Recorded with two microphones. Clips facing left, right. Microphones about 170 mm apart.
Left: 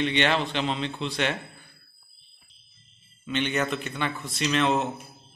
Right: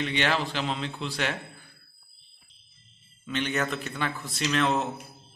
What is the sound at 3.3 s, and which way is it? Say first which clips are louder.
Speech: left 2 dB; centre (ahead or behind).